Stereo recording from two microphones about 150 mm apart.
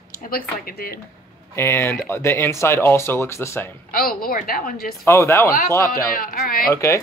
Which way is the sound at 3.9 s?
75° left (ahead or behind).